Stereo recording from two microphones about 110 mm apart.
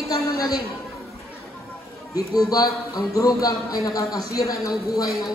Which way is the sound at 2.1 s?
35° left (ahead or behind).